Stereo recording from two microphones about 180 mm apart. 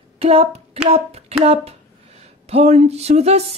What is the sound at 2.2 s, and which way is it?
Speech, 35° right (ahead or behind).